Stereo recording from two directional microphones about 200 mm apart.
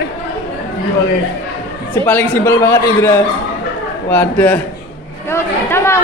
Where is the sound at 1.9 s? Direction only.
10° left (ahead or behind).